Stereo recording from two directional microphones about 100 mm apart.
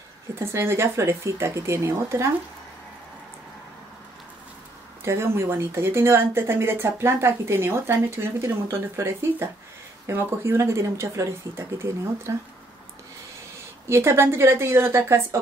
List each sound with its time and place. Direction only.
0.4 s speech: 25° right (ahead or behind)
5.0 s speech: 25° right (ahead or behind)
13.8 s speech: 25° right (ahead or behind)